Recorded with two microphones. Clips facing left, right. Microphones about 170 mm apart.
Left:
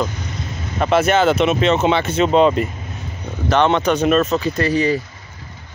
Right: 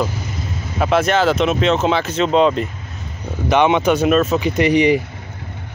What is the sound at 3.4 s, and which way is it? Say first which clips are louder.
Speech: right 1 dB; 10° right (ahead or behind).